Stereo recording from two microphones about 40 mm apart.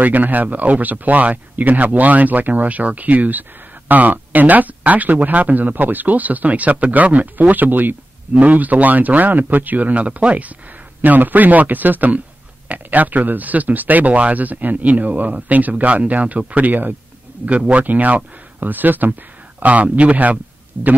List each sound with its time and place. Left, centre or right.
0.0 s speech: right
8.4 s speech: right
11.0 s speech: right
17.5 s speech: right
17.8 s speech: right